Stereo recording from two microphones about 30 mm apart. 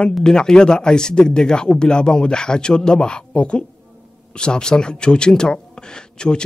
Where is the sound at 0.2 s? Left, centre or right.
Left.